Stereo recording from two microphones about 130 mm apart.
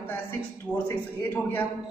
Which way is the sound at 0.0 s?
15° left (ahead or behind).